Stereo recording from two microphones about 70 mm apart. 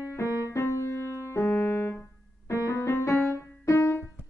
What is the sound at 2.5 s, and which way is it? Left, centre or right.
Music, left.